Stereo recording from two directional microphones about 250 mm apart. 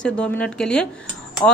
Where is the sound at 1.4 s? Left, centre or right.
Centre.